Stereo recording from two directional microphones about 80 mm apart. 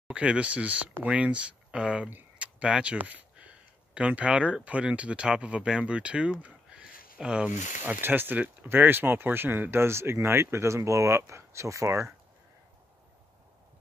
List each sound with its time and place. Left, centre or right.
0.1 s speech: centre
6.4 s a sound: centre
7.8 s speech: right